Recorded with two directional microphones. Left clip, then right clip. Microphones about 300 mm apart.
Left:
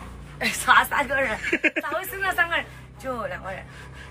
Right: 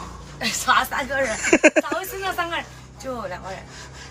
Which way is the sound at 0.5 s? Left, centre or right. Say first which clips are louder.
Left 1 dB; centre.